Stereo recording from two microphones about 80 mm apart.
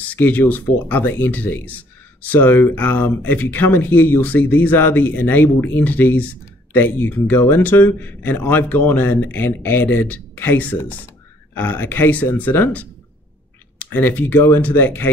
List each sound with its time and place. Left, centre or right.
0.1 s speech: left